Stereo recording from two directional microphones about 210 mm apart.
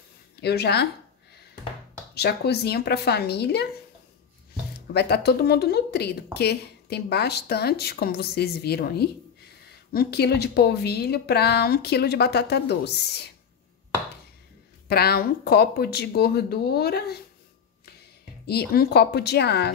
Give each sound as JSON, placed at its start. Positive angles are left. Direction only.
{"t": 0.4, "sound": "a woman's voice", "side_deg": 50}
{"t": 2.1, "sound": "a woman's voice", "side_deg": 50}
{"t": 4.7, "sound": "a woman's voice", "side_deg": 50}
{"t": 14.9, "sound": "a woman's voice", "side_deg": 50}
{"t": 18.5, "sound": "a woman's voice", "side_deg": 50}